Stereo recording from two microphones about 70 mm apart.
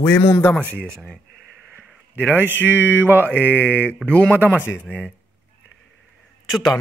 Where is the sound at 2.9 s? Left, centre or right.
Right.